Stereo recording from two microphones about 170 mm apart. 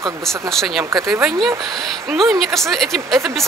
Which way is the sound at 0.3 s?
Centre (ahead or behind).